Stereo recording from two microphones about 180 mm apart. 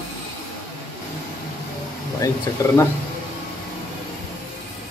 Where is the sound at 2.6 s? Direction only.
20° left (ahead or behind).